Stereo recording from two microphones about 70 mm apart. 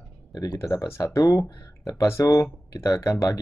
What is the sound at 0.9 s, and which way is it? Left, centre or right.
Speech, left.